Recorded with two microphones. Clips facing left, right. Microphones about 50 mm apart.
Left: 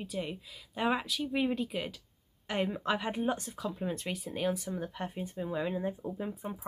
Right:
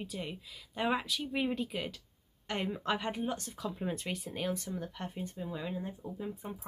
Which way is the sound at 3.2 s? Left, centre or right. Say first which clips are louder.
Left 4 dB; centre.